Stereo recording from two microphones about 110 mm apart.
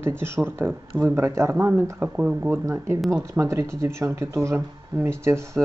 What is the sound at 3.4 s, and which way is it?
Speech, 25° right (ahead or behind).